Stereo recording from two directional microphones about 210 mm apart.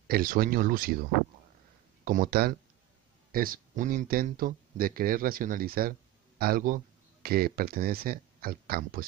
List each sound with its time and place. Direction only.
0.1 s speech: 45° right (ahead or behind)
2.0 s speech: 40° right (ahead or behind)